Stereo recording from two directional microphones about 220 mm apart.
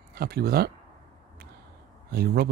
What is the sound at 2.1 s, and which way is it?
Speech, 45° right (ahead or behind).